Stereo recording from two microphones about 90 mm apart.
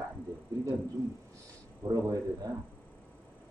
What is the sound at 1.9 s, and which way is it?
Speech, 45° right (ahead or behind).